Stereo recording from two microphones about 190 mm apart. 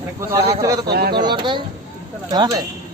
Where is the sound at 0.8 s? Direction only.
55° right (ahead or behind).